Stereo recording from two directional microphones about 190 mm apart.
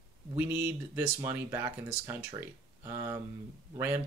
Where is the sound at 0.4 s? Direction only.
10° right (ahead or behind).